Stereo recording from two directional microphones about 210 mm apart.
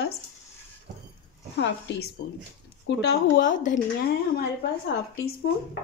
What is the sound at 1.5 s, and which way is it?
A woman's voice, 55° left (ahead or behind).